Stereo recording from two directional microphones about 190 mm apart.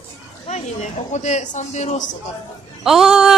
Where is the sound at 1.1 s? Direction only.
35° left (ahead or behind).